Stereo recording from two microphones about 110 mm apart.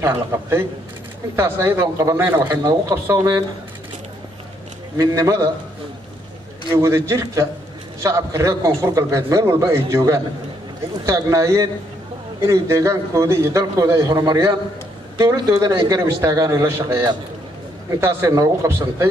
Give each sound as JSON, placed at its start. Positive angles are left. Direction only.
{"t": 0.0, "sound": "a man's voice", "side_deg": -25}
{"t": 4.9, "sound": "a man's voice", "side_deg": -30}
{"t": 6.7, "sound": "a man's voice", "side_deg": -25}
{"t": 18.0, "sound": "a man's voice", "side_deg": -30}